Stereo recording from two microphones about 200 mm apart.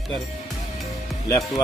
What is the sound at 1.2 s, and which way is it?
Speech, 15° left (ahead or behind).